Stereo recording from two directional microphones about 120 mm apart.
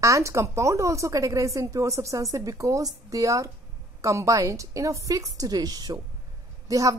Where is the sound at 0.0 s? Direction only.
25° right (ahead or behind).